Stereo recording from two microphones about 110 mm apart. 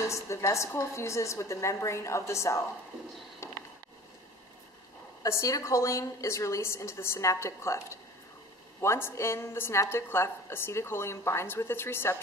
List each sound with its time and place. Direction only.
0.0 s a woman's voice: 25° left (ahead or behind)
5.2 s a woman's voice: 30° left (ahead or behind)